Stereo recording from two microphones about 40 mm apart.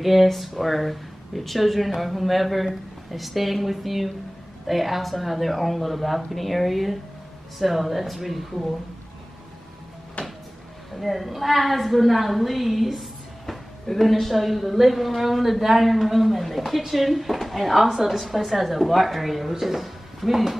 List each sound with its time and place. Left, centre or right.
0.0 s a woman's voice: centre
10.2 s cupboard open or close: left
11.0 s a woman's voice: centre